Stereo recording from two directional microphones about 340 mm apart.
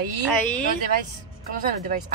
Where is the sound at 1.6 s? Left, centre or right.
Right.